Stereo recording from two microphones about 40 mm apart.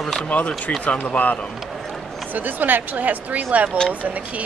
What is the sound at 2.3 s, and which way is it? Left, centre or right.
Speech, right.